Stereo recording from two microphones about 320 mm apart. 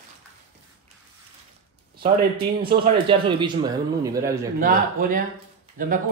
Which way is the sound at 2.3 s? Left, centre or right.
Centre.